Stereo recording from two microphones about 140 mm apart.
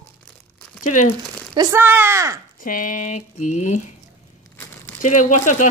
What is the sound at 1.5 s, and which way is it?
Speech, 25° right (ahead or behind).